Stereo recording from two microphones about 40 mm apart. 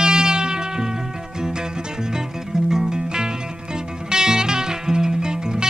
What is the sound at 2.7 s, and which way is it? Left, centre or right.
Music, centre.